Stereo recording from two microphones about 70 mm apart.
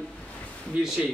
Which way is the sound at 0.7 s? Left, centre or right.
Centre.